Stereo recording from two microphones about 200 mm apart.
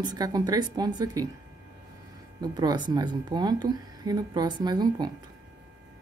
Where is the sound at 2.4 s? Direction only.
20° right (ahead or behind).